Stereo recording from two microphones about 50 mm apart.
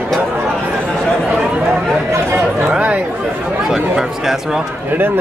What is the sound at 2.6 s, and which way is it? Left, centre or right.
Chatter, right.